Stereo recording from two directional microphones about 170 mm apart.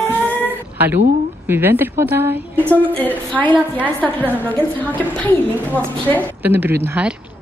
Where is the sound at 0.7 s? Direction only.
10° right (ahead or behind).